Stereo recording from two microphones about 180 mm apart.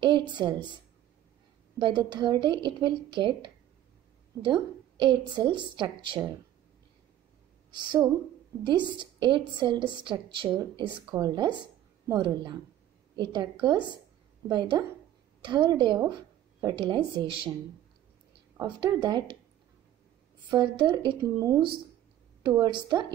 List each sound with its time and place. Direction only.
0.4 s a woman's voice: 25° right (ahead or behind)
1.8 s a woman's voice: 25° right (ahead or behind)
7.7 s a woman's voice: 25° right (ahead or behind)
18.6 s a woman's voice: 25° right (ahead or behind)
20.4 s a woman's voice: 25° right (ahead or behind)